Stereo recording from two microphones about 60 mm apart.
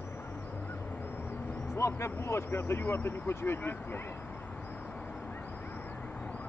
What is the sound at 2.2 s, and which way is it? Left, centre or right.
Speech, left.